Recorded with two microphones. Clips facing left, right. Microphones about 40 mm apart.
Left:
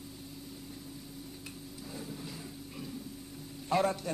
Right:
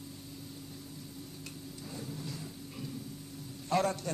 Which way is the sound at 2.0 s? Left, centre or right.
Centre.